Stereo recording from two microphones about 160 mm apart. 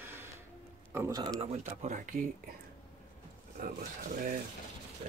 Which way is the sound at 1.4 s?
45° right (ahead or behind).